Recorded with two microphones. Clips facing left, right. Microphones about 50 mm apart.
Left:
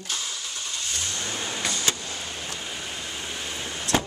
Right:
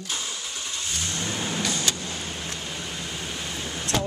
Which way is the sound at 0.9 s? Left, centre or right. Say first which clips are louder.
Right 3 dB; centre.